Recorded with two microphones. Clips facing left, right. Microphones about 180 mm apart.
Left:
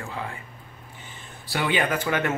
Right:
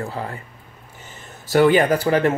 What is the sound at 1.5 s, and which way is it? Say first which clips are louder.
Speech: right 10 dB; 45° right (ahead or behind).